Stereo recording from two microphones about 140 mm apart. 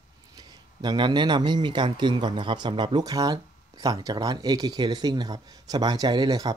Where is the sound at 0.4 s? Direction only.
30° right (ahead or behind).